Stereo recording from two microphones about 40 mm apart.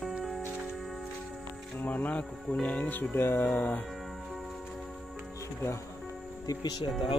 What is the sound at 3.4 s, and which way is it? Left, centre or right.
Speech, left.